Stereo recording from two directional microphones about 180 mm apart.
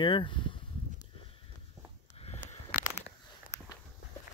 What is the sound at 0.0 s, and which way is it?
Speech, 30° left (ahead or behind).